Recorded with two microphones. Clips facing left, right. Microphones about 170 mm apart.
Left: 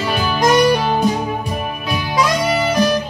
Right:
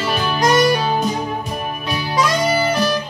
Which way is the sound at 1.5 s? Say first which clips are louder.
Left 1 dB; 5° left (ahead or behind).